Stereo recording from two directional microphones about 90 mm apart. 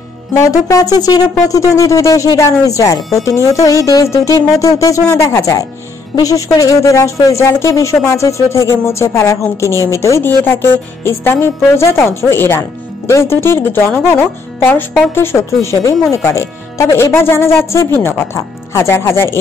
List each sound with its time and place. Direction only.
0.4 s a sound: 40° left (ahead or behind)
1.5 s speech: 35° left (ahead or behind)
3.0 s speech: centre (ahead or behind)
3.3 s speech: 35° left (ahead or behind)